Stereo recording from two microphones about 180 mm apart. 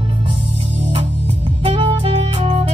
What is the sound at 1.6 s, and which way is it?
Music, 30° right (ahead or behind).